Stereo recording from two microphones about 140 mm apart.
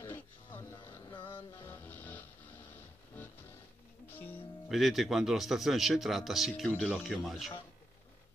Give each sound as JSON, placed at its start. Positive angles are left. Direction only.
{"t": 0.0, "sound": "music", "side_deg": 15}
{"t": 1.0, "sound": "music", "side_deg": 35}
{"t": 1.7, "sound": "music", "side_deg": 15}
{"t": 4.6, "sound": "a man's voice", "side_deg": 0}